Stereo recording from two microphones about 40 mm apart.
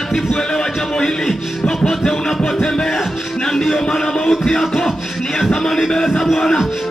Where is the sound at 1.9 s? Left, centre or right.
Centre.